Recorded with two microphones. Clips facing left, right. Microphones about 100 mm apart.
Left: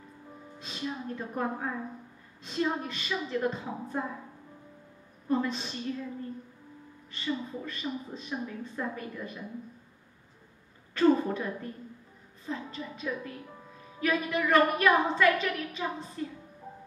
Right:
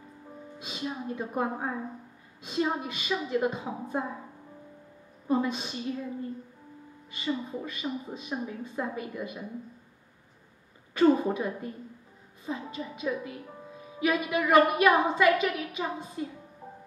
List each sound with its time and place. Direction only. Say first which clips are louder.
0.6 s a woman's voice: right 1 dB; 10° right (ahead or behind)
5.3 s a woman's voice: right 2 dB; 10° right (ahead or behind)
7.6 s a woman's voice: right 2 dB; 10° right (ahead or behind)
11.0 s a woman's voice: right 2 dB; 10° right (ahead or behind)